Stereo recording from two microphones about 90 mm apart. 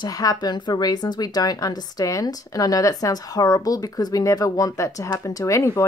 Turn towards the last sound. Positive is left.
turn(degrees=30)  # may be behind; listen again after turning